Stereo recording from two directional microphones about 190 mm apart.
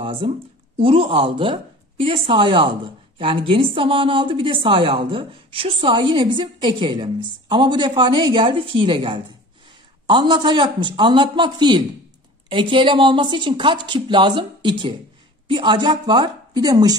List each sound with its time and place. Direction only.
0.0 s a woman's voice: 25° right (ahead or behind)